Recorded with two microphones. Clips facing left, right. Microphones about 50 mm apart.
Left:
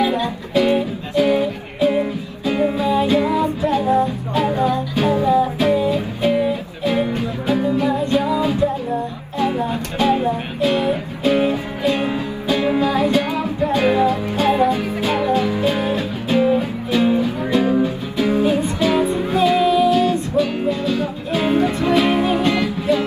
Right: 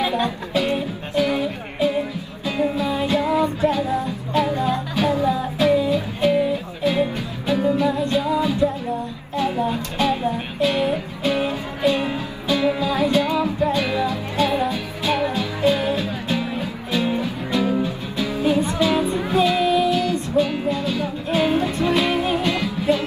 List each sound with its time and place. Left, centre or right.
0.6 s music: left
20.7 s music: left